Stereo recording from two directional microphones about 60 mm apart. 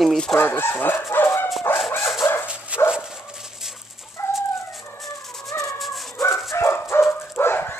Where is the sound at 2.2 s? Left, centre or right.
Left.